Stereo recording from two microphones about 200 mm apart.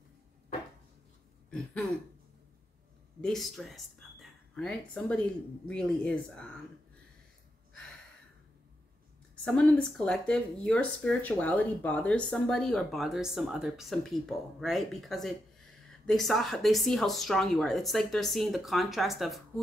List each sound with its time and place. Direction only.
1.5 s a sound: 5° left (ahead or behind)
3.2 s speech: centre (ahead or behind)
9.3 s speech: 5° left (ahead or behind)